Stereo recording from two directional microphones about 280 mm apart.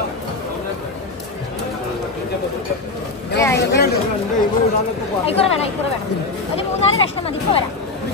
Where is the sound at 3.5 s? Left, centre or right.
Left.